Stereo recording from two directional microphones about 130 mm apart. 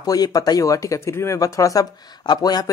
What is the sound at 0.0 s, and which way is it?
Speech, 30° left (ahead or behind).